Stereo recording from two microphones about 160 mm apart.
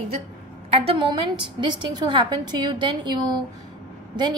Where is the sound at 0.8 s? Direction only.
35° right (ahead or behind).